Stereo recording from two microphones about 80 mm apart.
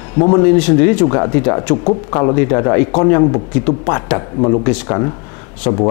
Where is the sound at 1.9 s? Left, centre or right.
Left.